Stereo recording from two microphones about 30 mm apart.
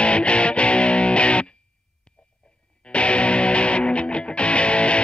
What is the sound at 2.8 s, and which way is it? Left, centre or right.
Music, left.